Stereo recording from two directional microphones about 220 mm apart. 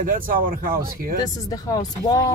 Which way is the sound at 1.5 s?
15° left (ahead or behind).